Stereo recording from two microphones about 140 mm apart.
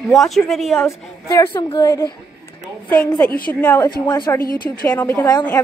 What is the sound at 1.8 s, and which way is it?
Speech, 25° left (ahead or behind).